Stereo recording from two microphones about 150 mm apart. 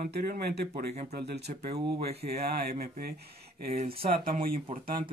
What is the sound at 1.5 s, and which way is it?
Speech, 60° right (ahead or behind).